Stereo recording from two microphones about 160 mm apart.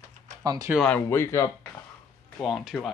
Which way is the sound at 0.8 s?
10° left (ahead or behind).